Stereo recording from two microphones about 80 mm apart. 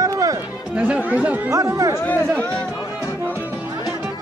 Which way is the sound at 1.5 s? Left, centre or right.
Right.